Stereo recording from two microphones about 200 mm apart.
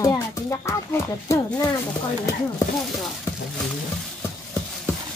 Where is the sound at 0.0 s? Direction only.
15° left (ahead or behind).